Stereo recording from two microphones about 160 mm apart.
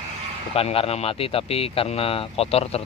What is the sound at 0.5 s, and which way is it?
Speech, 40° left (ahead or behind).